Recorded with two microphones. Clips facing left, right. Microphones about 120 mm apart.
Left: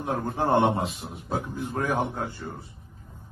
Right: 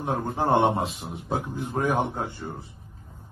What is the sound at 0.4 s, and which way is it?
A man's voice, 25° right (ahead or behind).